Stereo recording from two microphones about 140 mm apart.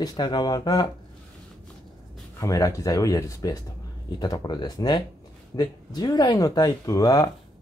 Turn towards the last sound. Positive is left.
turn(degrees=25)  # may be behind; listen again after turning